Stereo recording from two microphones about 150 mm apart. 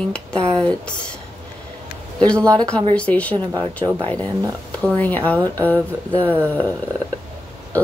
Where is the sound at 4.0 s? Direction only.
10° left (ahead or behind).